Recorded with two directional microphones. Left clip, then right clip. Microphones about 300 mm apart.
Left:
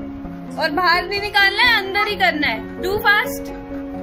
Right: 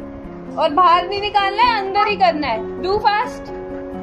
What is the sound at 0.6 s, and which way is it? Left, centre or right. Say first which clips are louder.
A woman's voice: right 4 dB; centre.